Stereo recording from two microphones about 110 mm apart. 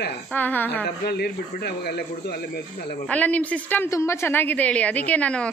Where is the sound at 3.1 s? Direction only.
15° left (ahead or behind).